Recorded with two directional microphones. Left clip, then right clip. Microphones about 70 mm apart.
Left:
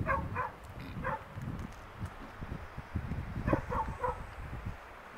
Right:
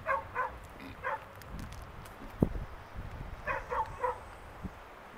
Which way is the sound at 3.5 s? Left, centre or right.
Centre.